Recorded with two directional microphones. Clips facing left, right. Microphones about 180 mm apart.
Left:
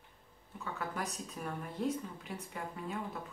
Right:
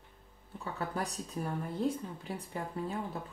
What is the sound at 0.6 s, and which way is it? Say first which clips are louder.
Speech: right 3 dB; 30° right (ahead or behind).